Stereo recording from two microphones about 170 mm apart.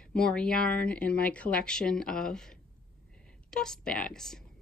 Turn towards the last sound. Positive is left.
turn(degrees=5)  # may be behind; listen again after turning